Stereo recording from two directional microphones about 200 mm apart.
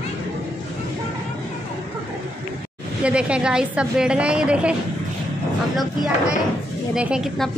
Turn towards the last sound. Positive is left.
turn(degrees=-5)  # may be behind; listen again after turning